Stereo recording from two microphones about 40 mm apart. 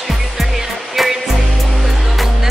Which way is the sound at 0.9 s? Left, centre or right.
Centre.